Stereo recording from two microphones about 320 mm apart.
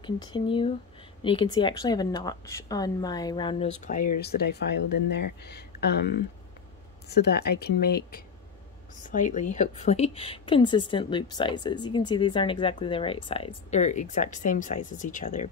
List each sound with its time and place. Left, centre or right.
0.0 s speech: centre